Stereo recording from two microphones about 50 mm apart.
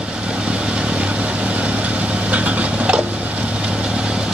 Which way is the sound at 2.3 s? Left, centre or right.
Right.